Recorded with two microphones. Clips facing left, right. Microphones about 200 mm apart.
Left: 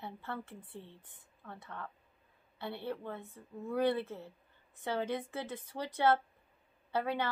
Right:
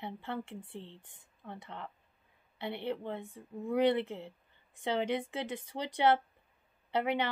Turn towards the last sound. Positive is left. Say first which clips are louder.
# right 3 dB
turn(degrees=-20)  # may be behind; listen again after turning